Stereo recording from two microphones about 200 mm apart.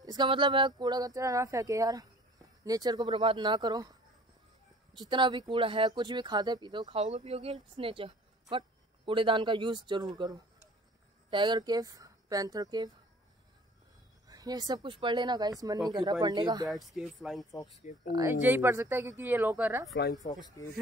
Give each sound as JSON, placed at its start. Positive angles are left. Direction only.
{"t": 0.0, "sound": "speech", "side_deg": -20}
{"t": 4.9, "sound": "speech", "side_deg": -20}
{"t": 14.2, "sound": "speech", "side_deg": -20}
{"t": 16.6, "sound": "speech", "side_deg": 0}
{"t": 18.1, "sound": "speech", "side_deg": -10}